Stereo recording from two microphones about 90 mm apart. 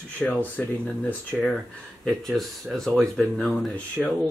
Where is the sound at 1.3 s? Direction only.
Centre (ahead or behind).